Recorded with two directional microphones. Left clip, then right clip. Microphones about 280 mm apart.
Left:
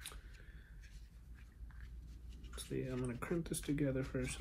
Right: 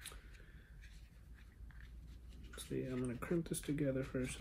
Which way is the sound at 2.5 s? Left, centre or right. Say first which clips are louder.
Even; centre.